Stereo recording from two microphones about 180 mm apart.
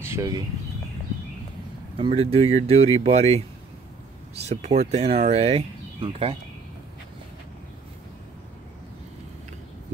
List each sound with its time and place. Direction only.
0.0 s a sound: 15° right (ahead or behind)
2.0 s speech: 30° right (ahead or behind)
4.5 s speech: 35° right (ahead or behind)